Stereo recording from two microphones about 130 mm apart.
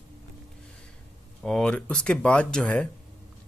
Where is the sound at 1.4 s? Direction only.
5° left (ahead or behind).